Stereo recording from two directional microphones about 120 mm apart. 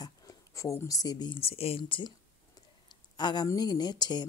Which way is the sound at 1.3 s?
55° left (ahead or behind).